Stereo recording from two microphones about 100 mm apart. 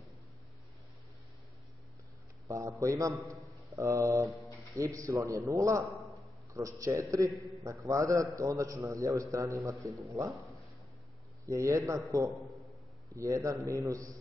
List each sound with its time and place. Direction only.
2.4 s a man's voice: 30° right (ahead or behind)
11.4 s speech: 30° right (ahead or behind)